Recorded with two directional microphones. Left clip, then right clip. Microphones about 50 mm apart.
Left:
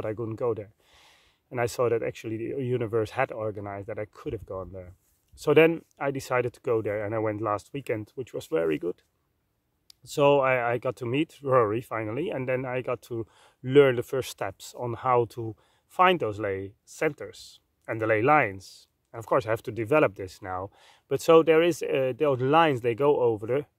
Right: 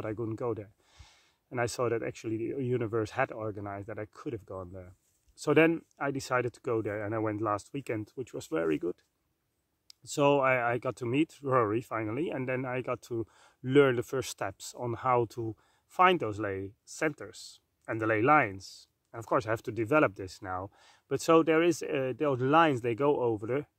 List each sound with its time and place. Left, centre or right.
0.0 s speech: left
4.6 s speech: left
5.3 s speech: left